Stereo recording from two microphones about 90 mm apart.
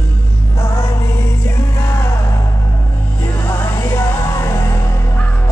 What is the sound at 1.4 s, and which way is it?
Music, 30° left (ahead or behind).